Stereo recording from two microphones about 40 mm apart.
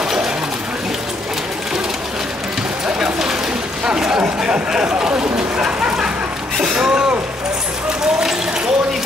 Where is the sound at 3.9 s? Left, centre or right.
Right.